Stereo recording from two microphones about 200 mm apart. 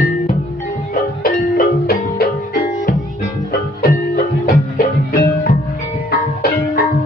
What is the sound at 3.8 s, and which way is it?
Music, 50° left (ahead or behind).